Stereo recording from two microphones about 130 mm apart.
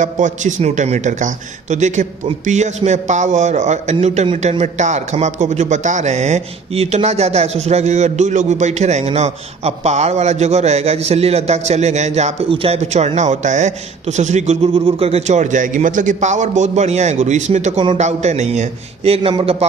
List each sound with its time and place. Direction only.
0.0 s a man's voice: 75° right (ahead or behind)
12.4 s a man's voice: 45° right (ahead or behind)